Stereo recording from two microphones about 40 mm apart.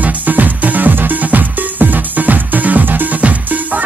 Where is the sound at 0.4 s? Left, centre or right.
Right.